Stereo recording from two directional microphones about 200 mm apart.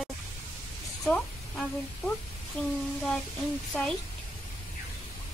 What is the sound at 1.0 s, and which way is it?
A woman's voice, 5° left (ahead or behind).